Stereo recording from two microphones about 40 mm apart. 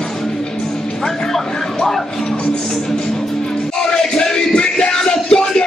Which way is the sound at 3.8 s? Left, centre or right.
Centre.